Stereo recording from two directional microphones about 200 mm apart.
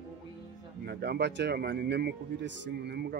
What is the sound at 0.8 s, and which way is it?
Speech, 55° right (ahead or behind).